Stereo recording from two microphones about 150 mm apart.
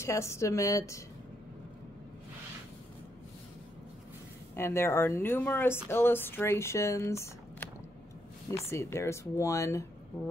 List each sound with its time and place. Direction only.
0.0 s speech: 20° left (ahead or behind)
4.6 s speech: 20° left (ahead or behind)